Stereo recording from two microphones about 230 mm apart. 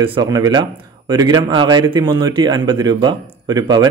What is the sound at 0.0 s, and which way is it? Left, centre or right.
Speech, centre.